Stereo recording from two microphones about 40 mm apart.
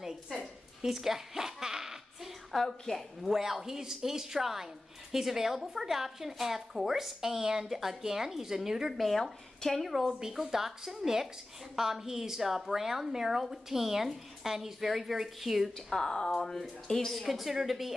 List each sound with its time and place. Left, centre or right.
0.8 s zipper: centre
2.5 s a woman's voice: centre
3.3 s a woman's voice: centre
7.4 s a woman's voice: right
7.7 s a woman's voice: centre
8.9 s a woman's voice: centre
9.2 s a woman's voice: centre
9.8 s a woman's voice: centre
15.9 s a woman's voice: centre